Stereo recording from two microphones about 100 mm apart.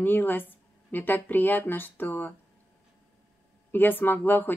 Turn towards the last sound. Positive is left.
turn(degrees=20)  # may be behind; listen again after turning